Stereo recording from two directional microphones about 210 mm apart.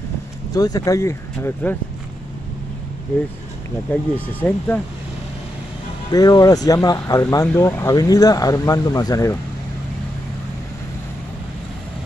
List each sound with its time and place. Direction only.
0.5 s speech: 15° left (ahead or behind)
3.9 s speech: 10° left (ahead or behind)
6.1 s speech: 15° left (ahead or behind)